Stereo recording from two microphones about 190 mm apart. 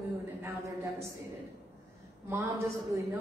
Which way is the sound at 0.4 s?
15° right (ahead or behind).